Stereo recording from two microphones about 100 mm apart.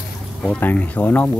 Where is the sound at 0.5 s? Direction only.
15° left (ahead or behind).